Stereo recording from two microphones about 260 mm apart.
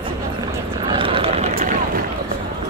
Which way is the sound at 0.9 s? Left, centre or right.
Right.